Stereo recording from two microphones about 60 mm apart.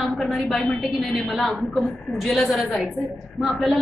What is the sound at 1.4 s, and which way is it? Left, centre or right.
Speech, left.